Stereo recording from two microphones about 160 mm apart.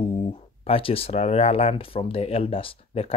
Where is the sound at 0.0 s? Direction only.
35° left (ahead or behind).